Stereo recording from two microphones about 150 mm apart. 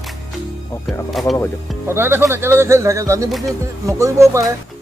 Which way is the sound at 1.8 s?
15° right (ahead or behind).